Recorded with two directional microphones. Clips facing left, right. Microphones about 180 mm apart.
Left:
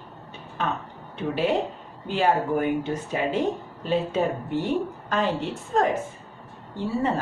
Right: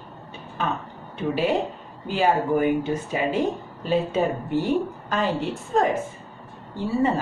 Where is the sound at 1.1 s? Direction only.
5° right (ahead or behind).